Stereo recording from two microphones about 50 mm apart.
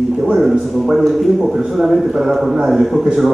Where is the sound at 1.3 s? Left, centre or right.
Centre.